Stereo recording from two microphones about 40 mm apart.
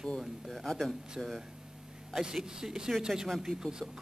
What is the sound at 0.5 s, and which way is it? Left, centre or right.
Speech, centre.